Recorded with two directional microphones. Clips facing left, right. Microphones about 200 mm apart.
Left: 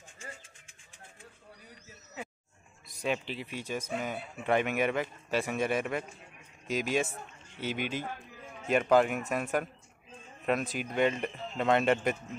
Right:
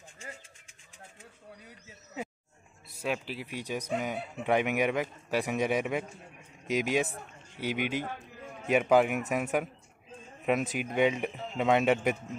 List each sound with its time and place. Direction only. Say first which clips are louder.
2.9 s speech: left 1 dB; 5° right (ahead or behind)